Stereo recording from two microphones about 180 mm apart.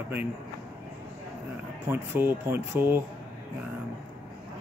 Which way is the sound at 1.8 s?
15° right (ahead or behind).